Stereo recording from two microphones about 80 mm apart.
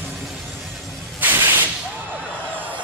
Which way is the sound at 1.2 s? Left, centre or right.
Right.